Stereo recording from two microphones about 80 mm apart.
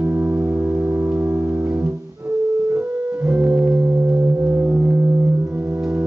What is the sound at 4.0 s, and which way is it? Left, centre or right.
Singing bowl, centre.